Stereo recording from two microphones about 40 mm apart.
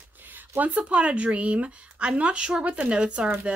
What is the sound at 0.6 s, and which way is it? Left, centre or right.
A woman's voice, right.